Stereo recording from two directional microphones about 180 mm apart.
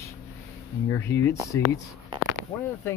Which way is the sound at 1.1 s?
15° left (ahead or behind).